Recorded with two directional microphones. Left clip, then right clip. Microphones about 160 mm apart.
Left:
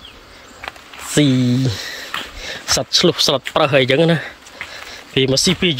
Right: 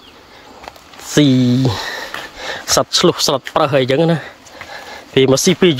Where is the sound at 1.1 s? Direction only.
10° right (ahead or behind).